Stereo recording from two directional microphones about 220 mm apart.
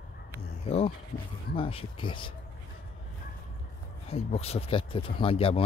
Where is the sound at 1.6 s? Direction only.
25° left (ahead or behind).